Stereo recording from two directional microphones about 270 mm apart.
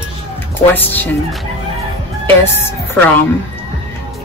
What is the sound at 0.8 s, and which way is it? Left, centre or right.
Speech, centre.